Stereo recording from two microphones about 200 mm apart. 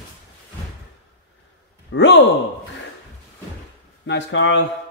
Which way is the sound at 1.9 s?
65° left (ahead or behind).